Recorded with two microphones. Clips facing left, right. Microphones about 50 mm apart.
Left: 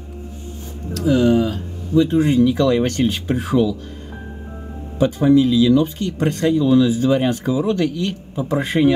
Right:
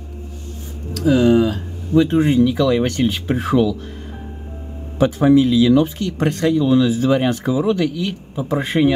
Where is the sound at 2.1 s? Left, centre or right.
Centre.